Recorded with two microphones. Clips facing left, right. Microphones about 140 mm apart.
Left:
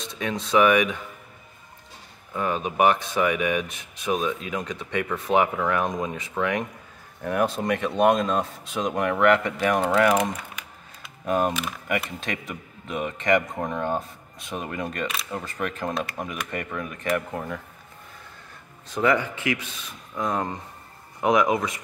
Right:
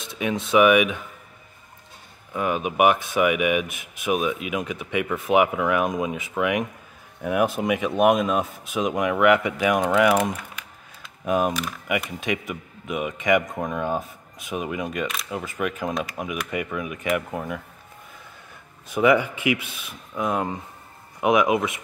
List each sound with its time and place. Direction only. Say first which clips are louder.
0.4 s speech: right 2 dB; 5° right (ahead or behind)
2.3 s speech: right 2 dB; 10° right (ahead or behind)
12.3 s speech: right 5 dB; 10° right (ahead or behind)
18.9 s speech: right 4 dB; 10° right (ahead or behind)